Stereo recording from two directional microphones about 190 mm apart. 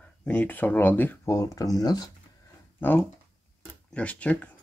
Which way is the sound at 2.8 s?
10° left (ahead or behind).